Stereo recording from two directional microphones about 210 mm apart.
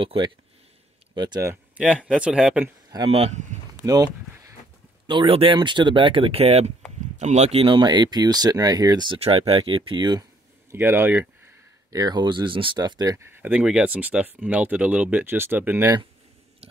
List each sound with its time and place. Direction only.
0.0 s speech: 25° right (ahead or behind); by 2.7 s 5° right (ahead or behind)
2.9 s speech: 25° right (ahead or behind)
3.8 s a sound: 15° right (ahead or behind)
5.0 s speech: 25° right (ahead or behind)
10.7 s speech: 10° right (ahead or behind)